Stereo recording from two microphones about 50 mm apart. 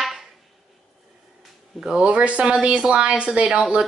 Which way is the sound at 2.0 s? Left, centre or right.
Right.